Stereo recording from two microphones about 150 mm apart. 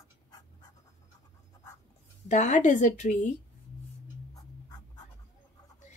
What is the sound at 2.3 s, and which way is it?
A woman's voice, 55° left (ahead or behind).